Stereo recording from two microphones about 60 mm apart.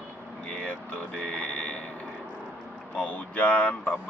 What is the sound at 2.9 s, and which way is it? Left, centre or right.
Speech, left.